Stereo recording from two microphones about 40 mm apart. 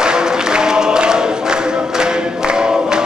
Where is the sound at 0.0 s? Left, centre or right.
Centre.